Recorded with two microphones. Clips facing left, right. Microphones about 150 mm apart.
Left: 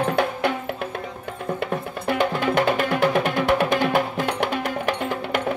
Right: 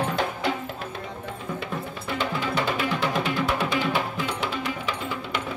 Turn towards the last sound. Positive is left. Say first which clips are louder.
# left 6 dB
turn(degrees=55)  # may be behind; listen again after turning